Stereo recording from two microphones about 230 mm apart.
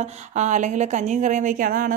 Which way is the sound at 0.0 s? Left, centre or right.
Right.